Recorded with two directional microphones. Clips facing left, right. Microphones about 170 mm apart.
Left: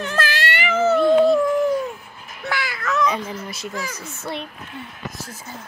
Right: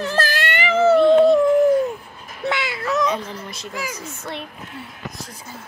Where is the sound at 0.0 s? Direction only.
35° right (ahead or behind).